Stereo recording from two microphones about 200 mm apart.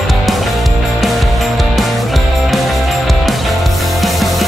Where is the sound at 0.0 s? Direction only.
Centre (ahead or behind).